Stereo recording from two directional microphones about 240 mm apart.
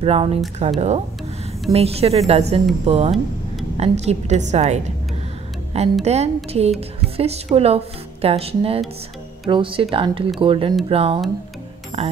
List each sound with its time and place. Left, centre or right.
0.0 s speech: right
6.0 s speech: right